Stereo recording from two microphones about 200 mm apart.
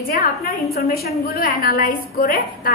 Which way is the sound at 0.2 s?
50° left (ahead or behind).